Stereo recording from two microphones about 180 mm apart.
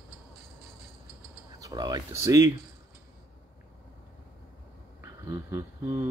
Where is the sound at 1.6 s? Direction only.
25° right (ahead or behind).